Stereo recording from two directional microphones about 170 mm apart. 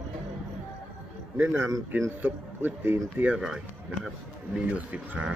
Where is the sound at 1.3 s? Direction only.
15° right (ahead or behind).